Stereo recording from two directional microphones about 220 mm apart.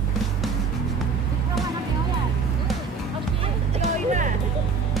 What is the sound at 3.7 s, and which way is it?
Music, 35° right (ahead or behind).